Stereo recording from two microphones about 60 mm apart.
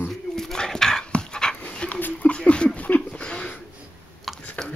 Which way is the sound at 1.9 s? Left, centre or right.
Left.